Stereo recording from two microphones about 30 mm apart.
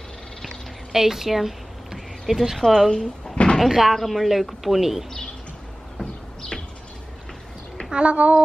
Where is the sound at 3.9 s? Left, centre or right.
Centre.